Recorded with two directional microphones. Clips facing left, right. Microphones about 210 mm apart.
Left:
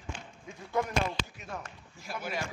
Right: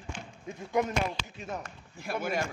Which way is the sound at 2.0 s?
55° right (ahead or behind).